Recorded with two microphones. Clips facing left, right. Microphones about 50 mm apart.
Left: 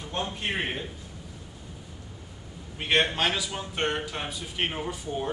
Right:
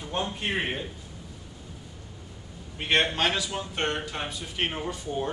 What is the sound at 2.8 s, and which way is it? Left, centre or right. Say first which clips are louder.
A man's voice: even; centre.